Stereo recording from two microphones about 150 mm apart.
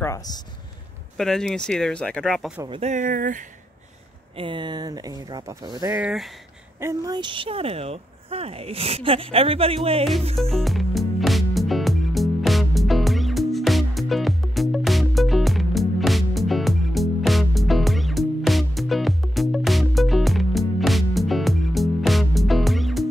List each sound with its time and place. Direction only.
0.0 s speech: 25° left (ahead or behind)
1.1 s speech: 5° left (ahead or behind)
2.8 s speech: 55° right (ahead or behind)
4.4 s speech: 30° right (ahead or behind)
5.9 s speech: 5° right (ahead or behind)
6.8 s speech: 20° right (ahead or behind); by 10.0 s 40° right (ahead or behind)
10.3 s music: centre (ahead or behind)